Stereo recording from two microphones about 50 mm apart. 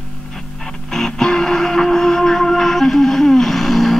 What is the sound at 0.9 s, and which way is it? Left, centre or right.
Music, centre.